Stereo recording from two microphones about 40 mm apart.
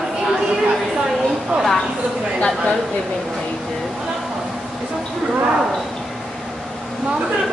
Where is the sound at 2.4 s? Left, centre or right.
Left.